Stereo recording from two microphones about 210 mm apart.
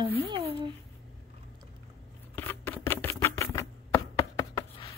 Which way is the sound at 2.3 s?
10° left (ahead or behind).